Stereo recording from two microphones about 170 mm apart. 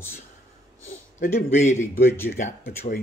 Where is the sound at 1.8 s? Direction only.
15° left (ahead or behind).